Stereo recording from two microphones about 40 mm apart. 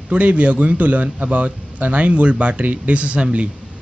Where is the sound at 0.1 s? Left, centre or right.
Right.